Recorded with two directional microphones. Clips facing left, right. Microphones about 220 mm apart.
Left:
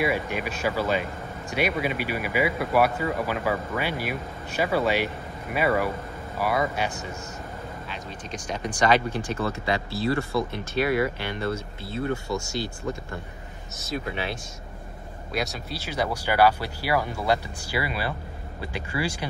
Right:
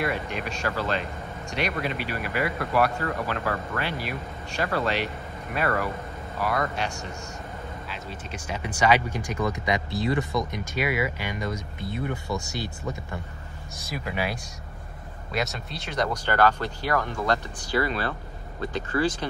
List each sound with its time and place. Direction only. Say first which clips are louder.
0.0 s speech: left 3 dB; 5° left (ahead or behind)
7.9 s speech: left 1 dB; 5° right (ahead or behind)
13.7 s speech: left 1 dB; 5° right (ahead or behind)
15.3 s speech: even; centre (ahead or behind)